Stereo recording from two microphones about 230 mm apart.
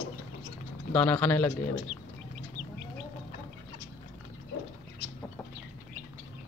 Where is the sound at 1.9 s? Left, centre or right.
Left.